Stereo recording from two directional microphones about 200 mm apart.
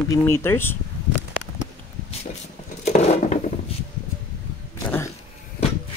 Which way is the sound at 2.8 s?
35° left (ahead or behind).